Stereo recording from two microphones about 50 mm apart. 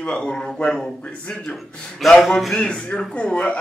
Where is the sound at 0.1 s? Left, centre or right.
Centre.